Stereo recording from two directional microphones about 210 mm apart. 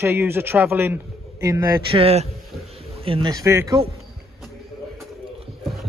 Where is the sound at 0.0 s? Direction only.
10° right (ahead or behind).